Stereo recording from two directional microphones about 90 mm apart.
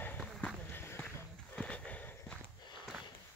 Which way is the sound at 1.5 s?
15° left (ahead or behind).